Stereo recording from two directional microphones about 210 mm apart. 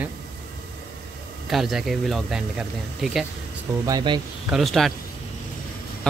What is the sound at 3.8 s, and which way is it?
Speech, 20° right (ahead or behind).